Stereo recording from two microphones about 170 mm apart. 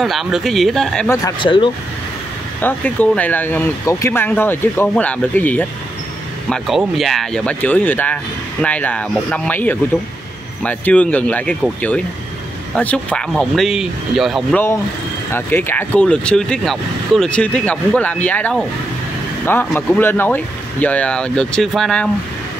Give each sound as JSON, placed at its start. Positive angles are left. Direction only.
{"t": 0.0, "sound": "speech", "side_deg": 0}
{"t": 1.0, "sound": "speech", "side_deg": 20}
{"t": 1.4, "sound": "speech", "side_deg": 30}
{"t": 2.6, "sound": "speech", "side_deg": 10}
{"t": 15.3, "sound": "speech", "side_deg": 10}